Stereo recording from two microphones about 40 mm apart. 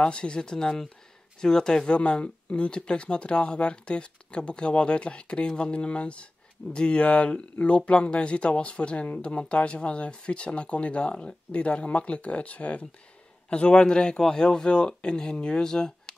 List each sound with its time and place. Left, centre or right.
0.0 s speech: left